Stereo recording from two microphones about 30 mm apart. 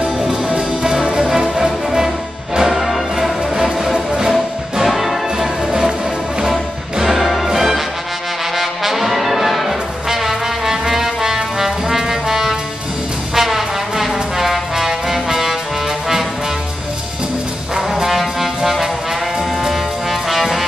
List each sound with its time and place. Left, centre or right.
0.5 s music: right
2.8 s music: centre
4.8 s music: centre
5.7 s music: right
7.0 s music: centre
8.5 s brass instrument: centre
18.0 s music: centre